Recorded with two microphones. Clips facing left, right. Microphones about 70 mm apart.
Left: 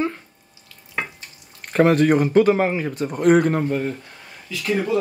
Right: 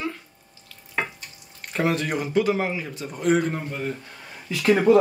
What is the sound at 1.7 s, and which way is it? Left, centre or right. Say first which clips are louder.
A man's voice: left 9 dB; left.